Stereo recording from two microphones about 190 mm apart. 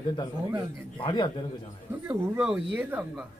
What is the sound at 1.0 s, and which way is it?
Speech, 25° left (ahead or behind).